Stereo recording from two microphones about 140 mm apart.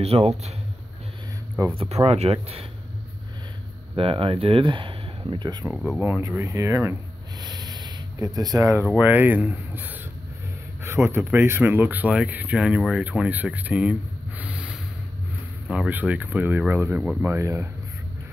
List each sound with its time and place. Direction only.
0.0 s speech: 45° right (ahead or behind)
2.0 s speech: 45° right (ahead or behind)
3.9 s speech: 40° right (ahead or behind)
5.7 s speech: centre (ahead or behind)
5.9 s speech: 15° right (ahead or behind)
7.4 s a sound: 30° right (ahead or behind)
8.9 s speech: 15° right (ahead or behind)
15.7 s speech: 10° right (ahead or behind)